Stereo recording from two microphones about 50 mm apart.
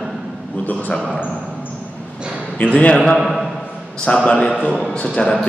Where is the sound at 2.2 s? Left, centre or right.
Centre.